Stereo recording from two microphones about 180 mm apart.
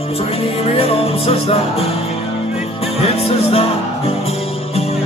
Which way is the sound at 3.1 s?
35° left (ahead or behind).